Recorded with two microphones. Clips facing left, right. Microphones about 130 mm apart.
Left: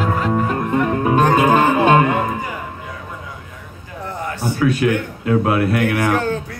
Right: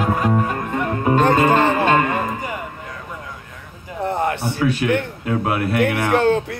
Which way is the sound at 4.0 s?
60° right (ahead or behind).